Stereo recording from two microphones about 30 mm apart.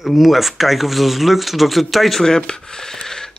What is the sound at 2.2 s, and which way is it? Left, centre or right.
Speech, left.